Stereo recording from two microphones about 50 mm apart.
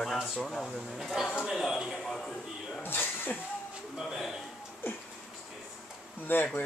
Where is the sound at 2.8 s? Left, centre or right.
Left.